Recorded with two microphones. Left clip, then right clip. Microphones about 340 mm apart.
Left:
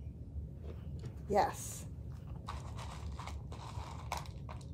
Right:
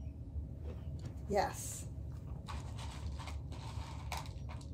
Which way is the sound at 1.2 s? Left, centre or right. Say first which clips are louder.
Left 3 dB; left.